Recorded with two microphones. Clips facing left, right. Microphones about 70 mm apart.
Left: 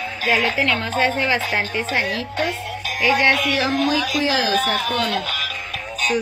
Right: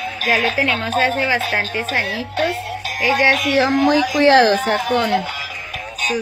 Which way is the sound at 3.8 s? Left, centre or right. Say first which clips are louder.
Right 7 dB; right.